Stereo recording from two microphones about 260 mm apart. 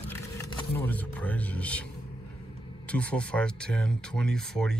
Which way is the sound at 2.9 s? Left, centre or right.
Centre.